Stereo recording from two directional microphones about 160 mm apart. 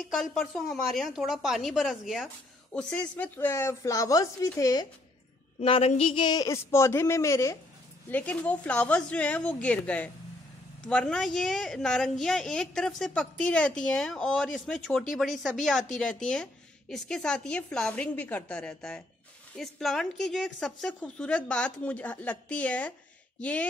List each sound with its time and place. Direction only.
0.0 s a woman's voice: centre (ahead or behind); by 4.8 s 20° left (ahead or behind)
5.6 s a woman's voice: 35° left (ahead or behind); by 22.9 s 10° left (ahead or behind)